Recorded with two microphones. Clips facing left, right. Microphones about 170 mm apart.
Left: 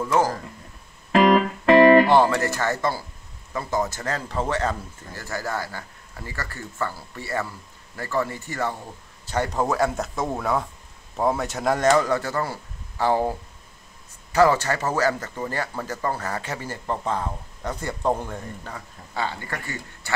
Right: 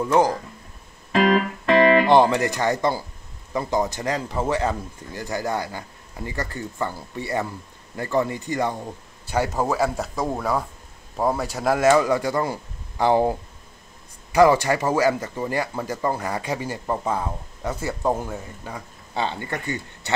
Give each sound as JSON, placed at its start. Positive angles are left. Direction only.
{"t": 0.0, "sound": "speech", "side_deg": -15}
{"t": 1.1, "sound": "music", "side_deg": 50}
{"t": 2.0, "sound": "speech", "side_deg": -20}
{"t": 9.3, "sound": "speech", "side_deg": -5}
{"t": 19.1, "sound": "speech", "side_deg": -20}